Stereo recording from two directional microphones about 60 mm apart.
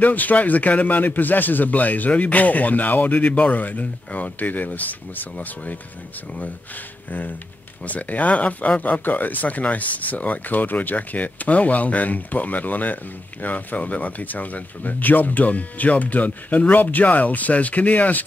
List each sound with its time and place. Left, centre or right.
0.0 s speech: left
7.8 s speech: left